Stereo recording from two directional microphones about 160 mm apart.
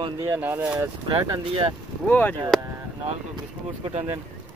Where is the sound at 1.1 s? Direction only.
35° right (ahead or behind).